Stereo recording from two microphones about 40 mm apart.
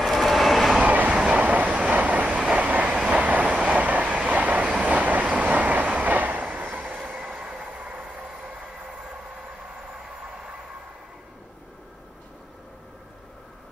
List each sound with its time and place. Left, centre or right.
0.0 s vehicle: centre
0.8 s train: right
2.5 s vehicle: right
2.9 s train: right
4.8 s vehicle: right
5.3 s train: right